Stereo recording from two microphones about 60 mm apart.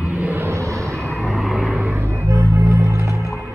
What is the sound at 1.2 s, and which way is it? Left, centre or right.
Vehicle, centre.